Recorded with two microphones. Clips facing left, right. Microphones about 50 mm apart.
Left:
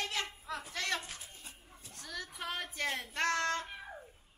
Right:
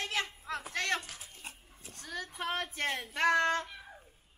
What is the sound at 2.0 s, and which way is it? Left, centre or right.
Child singing, centre.